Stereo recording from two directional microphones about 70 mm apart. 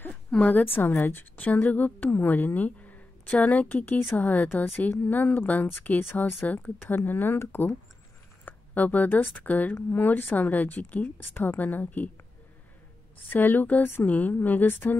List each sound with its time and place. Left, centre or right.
0.1 s a sound: centre
0.5 s a woman's voice: left
13.3 s a woman's voice: left